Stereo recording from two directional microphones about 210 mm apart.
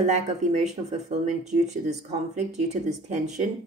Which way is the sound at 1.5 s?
35° right (ahead or behind).